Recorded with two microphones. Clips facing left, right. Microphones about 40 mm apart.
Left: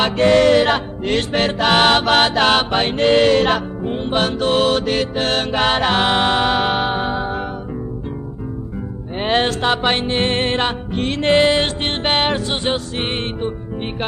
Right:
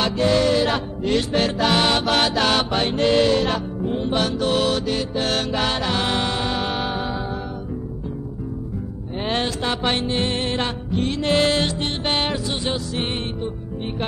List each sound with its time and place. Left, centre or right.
0.0 s music: left
9.2 s music: left
11.3 s music: left
11.6 s music: left